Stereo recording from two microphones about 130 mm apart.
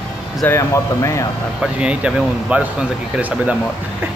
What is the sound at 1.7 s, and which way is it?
Speech, 10° right (ahead or behind).